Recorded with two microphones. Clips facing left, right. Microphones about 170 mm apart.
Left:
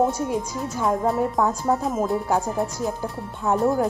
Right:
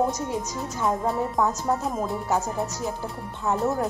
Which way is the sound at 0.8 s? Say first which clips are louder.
Left 3 dB; centre (ahead or behind).